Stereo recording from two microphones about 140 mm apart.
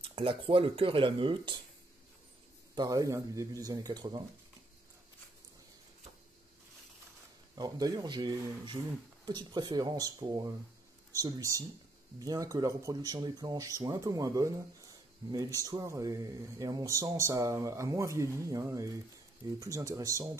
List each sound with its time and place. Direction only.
0.0 s speech: 40° right (ahead or behind)
2.7 s speech: 30° right (ahead or behind)
7.5 s speech: 25° right (ahead or behind)